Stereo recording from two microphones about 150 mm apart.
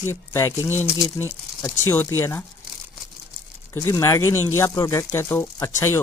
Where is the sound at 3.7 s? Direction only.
20° left (ahead or behind).